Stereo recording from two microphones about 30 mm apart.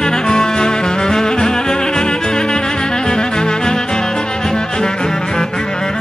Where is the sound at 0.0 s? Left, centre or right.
Left.